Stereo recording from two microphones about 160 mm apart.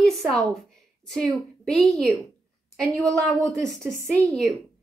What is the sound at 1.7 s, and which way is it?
Speech, centre (ahead or behind).